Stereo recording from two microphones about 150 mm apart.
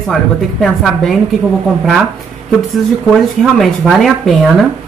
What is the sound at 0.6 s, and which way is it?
Speech, centre (ahead or behind).